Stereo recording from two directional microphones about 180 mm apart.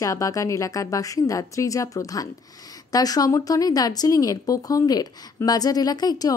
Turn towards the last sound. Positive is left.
turn(degrees=20)  # may be behind; listen again after turning